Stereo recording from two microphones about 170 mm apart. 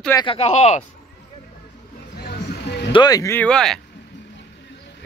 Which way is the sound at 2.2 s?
70° left (ahead or behind).